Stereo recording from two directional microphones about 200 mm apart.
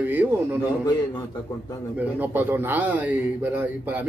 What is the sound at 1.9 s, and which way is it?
A man's voice, 10° right (ahead or behind).